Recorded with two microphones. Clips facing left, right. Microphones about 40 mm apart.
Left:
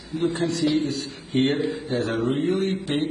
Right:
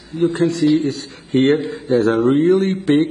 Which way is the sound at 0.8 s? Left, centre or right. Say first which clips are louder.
Right 5 dB; right.